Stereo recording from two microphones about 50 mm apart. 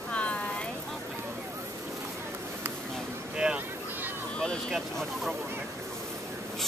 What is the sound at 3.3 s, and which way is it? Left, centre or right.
Boat, centre.